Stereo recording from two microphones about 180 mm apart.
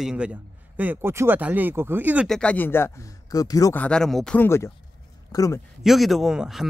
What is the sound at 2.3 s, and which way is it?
Speech, 5° left (ahead or behind).